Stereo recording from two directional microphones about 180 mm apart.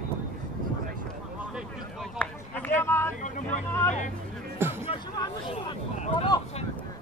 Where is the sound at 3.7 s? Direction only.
10° left (ahead or behind).